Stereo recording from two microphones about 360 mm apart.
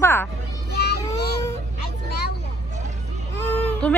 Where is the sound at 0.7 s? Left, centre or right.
Left.